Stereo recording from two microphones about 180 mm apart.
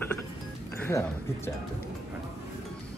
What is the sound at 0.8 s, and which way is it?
Speech, 15° left (ahead or behind).